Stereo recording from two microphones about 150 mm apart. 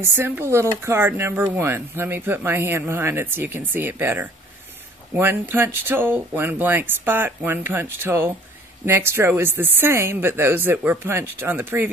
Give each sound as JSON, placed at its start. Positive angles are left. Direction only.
{"t": 0.0, "sound": "speech", "side_deg": -15}